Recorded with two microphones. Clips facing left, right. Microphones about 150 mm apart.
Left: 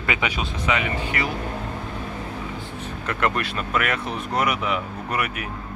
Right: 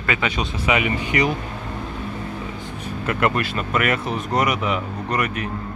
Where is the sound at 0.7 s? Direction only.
15° right (ahead or behind).